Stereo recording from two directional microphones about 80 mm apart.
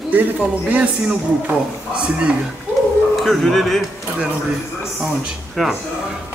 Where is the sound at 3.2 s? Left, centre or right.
Centre.